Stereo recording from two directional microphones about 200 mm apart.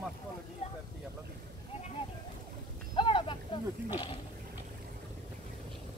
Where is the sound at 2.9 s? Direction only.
25° left (ahead or behind).